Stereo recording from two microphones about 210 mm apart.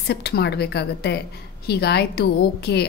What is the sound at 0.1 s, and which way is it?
A woman's voice, 50° left (ahead or behind).